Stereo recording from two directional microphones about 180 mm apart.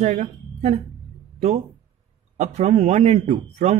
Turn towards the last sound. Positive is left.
turn(degrees=-35)  # may be behind; listen again after turning